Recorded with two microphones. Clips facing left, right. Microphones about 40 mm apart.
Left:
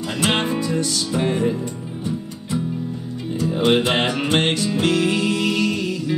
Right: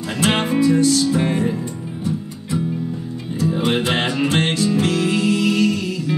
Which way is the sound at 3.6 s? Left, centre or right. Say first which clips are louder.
Left 4 dB; left.